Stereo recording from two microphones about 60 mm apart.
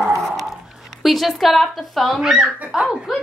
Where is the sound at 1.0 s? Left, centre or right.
Centre.